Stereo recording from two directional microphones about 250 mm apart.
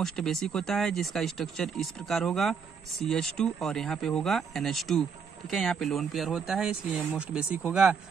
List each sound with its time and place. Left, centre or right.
0.0 s speech: centre